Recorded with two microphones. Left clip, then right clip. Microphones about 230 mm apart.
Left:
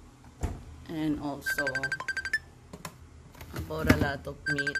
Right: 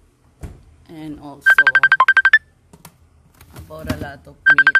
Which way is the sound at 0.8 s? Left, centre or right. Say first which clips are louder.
Left 1 dB; centre.